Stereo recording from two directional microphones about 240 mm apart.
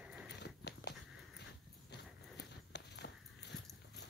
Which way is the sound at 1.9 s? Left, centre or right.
Left.